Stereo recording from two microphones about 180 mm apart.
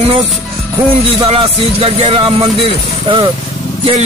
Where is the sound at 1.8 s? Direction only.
30° right (ahead or behind).